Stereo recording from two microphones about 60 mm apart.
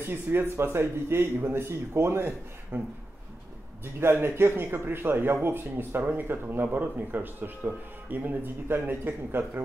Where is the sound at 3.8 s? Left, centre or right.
Right.